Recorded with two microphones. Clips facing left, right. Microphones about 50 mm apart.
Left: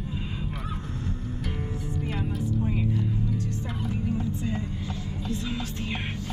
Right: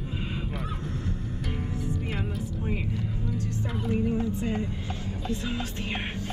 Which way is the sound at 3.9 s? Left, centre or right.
Right.